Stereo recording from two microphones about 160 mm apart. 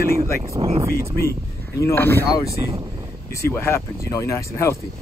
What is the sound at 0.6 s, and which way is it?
Speech, 35° right (ahead or behind).